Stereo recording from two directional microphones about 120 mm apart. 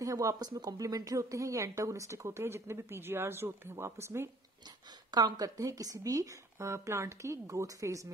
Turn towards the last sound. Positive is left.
turn(degrees=-25)  # may be behind; listen again after turning